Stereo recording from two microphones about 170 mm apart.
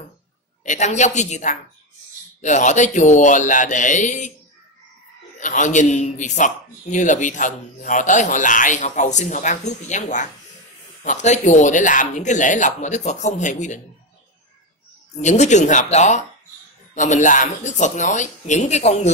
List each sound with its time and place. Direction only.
0.7 s a man's voice: 45° left (ahead or behind)
5.4 s a man's voice: 50° left (ahead or behind)
15.1 s a man's voice: 45° left (ahead or behind)